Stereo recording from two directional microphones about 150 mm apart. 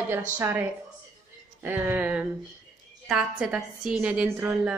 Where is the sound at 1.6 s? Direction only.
10° right (ahead or behind).